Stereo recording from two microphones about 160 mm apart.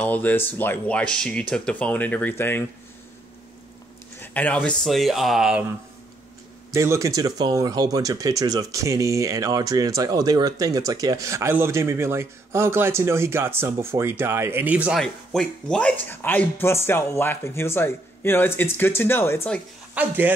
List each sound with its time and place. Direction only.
0.0 s speech: 10° left (ahead or behind)
4.2 s speech: 10° left (ahead or behind)
6.7 s speech: 20° right (ahead or behind)
15.0 s speech: 5° left (ahead or behind)
19.9 s speech: 10° right (ahead or behind)